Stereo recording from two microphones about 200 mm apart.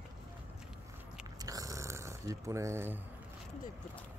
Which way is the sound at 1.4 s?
15° right (ahead or behind).